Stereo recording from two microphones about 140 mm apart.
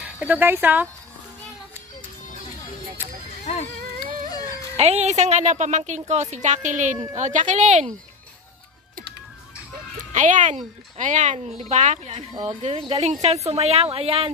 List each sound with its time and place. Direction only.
0.0 s speech: 10° right (ahead or behind)
4.7 s speech: 50° right (ahead or behind)
10.1 s speech: 60° right (ahead or behind); by 14.3 s 40° right (ahead or behind)